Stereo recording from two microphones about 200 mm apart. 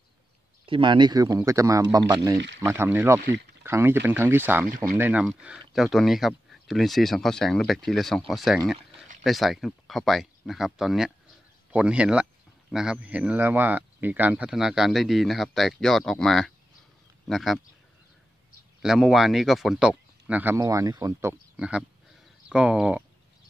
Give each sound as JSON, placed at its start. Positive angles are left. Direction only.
{"t": 0.7, "sound": "speech", "side_deg": -25}
{"t": 18.8, "sound": "speech", "side_deg": 0}